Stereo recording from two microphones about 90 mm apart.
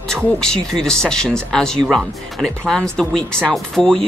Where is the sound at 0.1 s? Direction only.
5° left (ahead or behind).